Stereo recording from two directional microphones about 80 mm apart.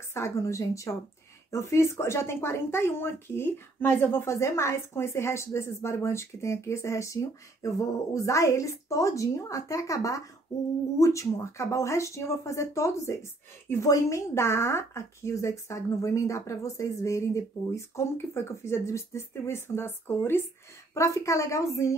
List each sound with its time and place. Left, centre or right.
0.1 s speech: left
20.9 s speech: left